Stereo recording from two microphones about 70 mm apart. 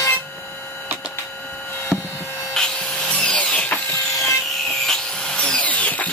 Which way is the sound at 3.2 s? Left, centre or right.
Centre.